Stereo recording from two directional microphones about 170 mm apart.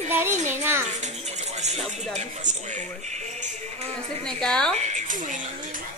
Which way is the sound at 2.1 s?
45° right (ahead or behind).